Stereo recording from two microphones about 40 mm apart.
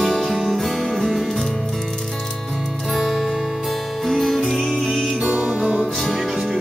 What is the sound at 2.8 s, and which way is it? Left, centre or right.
Music, centre.